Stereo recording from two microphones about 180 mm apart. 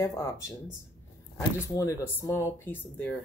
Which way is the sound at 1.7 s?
15° left (ahead or behind).